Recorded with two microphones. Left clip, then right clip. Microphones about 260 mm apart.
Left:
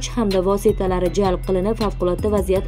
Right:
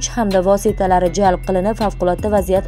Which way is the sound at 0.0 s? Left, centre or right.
Centre.